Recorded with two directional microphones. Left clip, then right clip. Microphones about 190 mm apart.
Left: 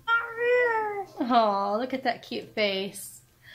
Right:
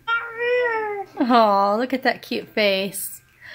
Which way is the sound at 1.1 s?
55° right (ahead or behind).